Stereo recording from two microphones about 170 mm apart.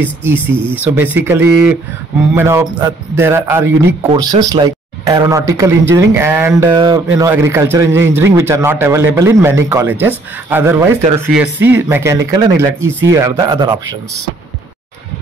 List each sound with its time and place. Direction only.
0.0 s speech: 10° right (ahead or behind)
6.7 s speech: 25° right (ahead or behind)